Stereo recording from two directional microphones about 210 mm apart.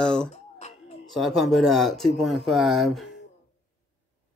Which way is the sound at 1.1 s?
Centre (ahead or behind).